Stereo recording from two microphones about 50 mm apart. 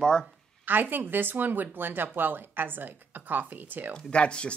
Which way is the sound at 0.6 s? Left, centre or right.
Right.